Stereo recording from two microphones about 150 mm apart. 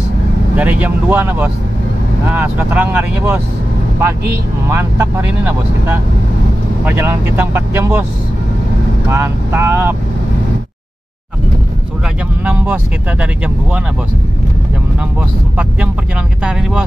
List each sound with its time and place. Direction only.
0.6 s speech: 10° right (ahead or behind)
4.6 s speech: 20° right (ahead or behind)
6.8 s speech: 15° right (ahead or behind)
9.1 s speech: 15° right (ahead or behind)
12.4 s speech: 10° right (ahead or behind)